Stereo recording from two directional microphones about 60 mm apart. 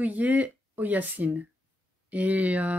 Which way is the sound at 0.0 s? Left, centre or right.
Right.